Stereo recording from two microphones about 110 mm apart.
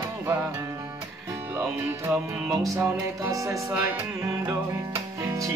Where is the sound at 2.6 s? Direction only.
25° right (ahead or behind).